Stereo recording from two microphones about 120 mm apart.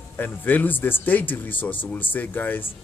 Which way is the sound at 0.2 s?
15° left (ahead or behind).